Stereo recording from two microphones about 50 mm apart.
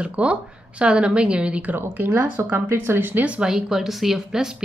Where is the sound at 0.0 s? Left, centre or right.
Right.